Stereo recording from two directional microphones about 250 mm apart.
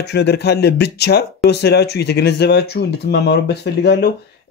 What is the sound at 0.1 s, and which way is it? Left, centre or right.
Speech, left.